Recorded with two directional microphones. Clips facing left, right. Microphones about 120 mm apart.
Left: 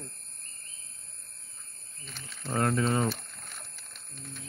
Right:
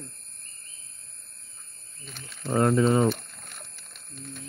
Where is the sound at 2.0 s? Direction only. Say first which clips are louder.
Right 3 dB; centre (ahead or behind).